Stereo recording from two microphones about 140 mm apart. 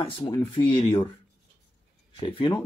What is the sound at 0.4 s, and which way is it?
Speech, 40° left (ahead or behind).